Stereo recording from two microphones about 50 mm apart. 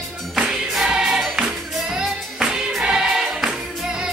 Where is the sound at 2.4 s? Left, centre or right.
Centre.